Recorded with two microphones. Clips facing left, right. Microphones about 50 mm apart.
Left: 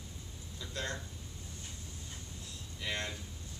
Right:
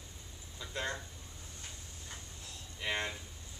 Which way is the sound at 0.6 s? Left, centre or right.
Centre.